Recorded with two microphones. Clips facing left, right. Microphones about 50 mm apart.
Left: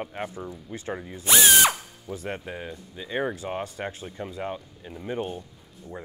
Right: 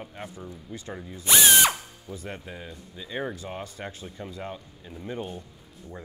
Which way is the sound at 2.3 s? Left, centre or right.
Left.